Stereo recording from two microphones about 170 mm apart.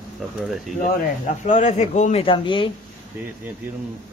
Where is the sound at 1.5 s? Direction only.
45° left (ahead or behind).